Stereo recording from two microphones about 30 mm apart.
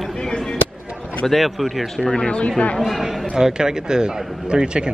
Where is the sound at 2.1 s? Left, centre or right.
Left.